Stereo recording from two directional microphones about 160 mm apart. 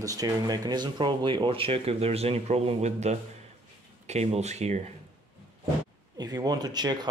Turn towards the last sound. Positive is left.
turn(degrees=-25)  # may be behind; listen again after turning